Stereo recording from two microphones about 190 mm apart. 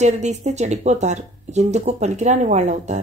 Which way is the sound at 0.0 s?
40° right (ahead or behind).